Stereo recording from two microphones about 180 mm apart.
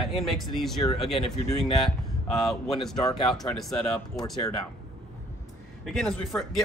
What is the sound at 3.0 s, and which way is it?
Speech, 25° left (ahead or behind).